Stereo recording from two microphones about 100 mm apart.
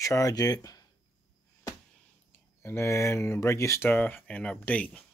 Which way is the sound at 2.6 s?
30° left (ahead or behind).